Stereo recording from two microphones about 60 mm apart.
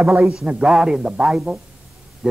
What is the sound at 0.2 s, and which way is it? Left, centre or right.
A man's voice, centre.